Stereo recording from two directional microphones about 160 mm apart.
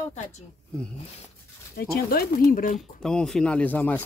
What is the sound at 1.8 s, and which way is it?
Speech, 70° left (ahead or behind).